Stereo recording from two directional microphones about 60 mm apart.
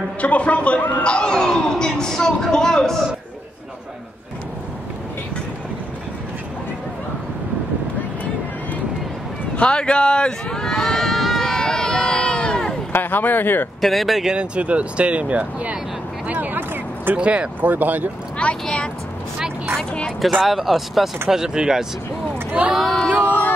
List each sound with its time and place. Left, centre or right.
0.2 s a man's voice: left
9.6 s run: centre
12.9 s speech: left
13.7 s speech: centre
14.3 s speech: centre
16.3 s a sound: right
17.2 s speech: centre
17.6 s speech: right
18.4 s speech: centre
20.2 s speech: centre
22.5 s speech: centre